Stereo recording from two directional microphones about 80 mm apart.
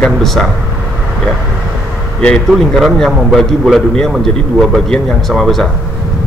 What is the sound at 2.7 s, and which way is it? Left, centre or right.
A man's voice, centre.